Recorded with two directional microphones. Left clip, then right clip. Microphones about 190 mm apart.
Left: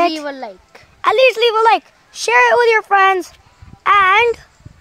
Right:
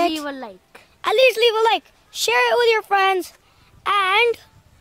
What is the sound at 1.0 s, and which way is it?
Speech, centre (ahead or behind).